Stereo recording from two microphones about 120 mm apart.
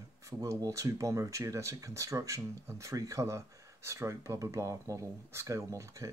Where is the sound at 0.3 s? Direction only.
25° right (ahead or behind).